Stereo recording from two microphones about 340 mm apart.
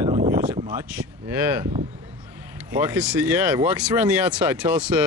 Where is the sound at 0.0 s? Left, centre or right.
Centre.